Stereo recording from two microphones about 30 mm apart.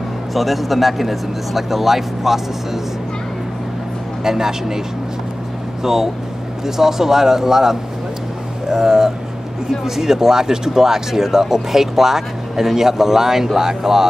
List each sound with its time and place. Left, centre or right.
0.3 s speech: centre
4.2 s speech: centre
6.6 s speech: centre